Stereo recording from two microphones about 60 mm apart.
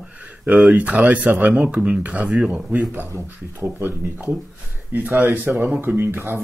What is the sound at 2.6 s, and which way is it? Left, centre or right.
Speech, centre.